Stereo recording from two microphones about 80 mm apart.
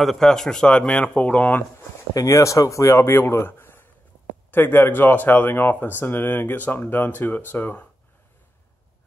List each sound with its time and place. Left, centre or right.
0.0 s speech: centre
2.1 s speech: left